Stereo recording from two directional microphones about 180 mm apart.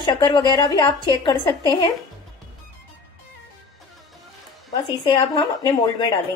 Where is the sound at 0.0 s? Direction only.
25° left (ahead or behind).